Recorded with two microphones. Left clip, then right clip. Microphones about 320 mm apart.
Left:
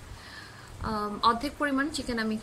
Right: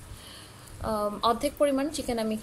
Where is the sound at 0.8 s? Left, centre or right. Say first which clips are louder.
Even; centre.